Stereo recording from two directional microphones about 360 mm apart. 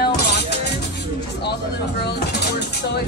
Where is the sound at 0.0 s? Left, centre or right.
Left.